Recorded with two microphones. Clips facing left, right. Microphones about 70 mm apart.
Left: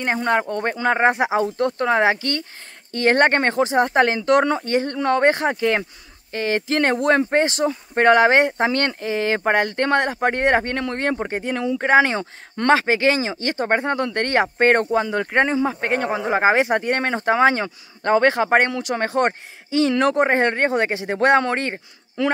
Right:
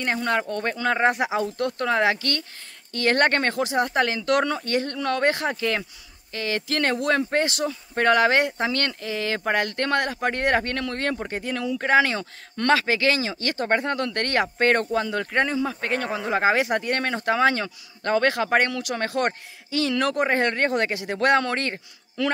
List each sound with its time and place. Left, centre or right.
0.0 s speech: left